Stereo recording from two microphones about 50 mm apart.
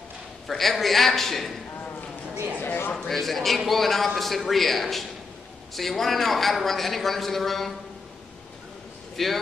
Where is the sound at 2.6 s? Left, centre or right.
Left.